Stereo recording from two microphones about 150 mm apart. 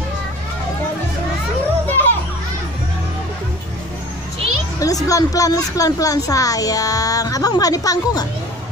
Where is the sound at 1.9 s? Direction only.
15° left (ahead or behind).